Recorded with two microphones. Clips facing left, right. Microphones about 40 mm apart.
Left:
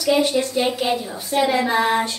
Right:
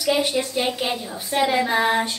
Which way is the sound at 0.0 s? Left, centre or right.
Centre.